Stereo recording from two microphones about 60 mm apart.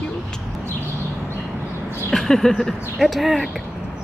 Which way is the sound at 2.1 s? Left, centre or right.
Centre.